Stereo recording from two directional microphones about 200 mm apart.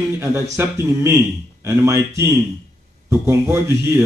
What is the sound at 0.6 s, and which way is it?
A man's voice, 15° right (ahead or behind).